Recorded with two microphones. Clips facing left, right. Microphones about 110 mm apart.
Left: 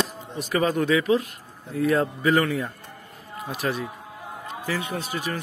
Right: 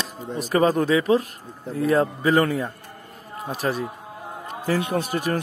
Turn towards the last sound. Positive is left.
turn(degrees=-50)  # may be behind; listen again after turning